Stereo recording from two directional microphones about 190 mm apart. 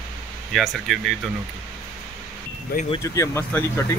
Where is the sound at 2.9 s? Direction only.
15° left (ahead or behind).